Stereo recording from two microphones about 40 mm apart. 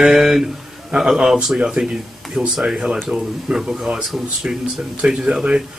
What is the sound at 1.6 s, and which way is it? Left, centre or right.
Speech, centre.